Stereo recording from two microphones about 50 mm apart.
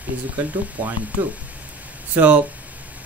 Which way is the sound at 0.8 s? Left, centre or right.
Right.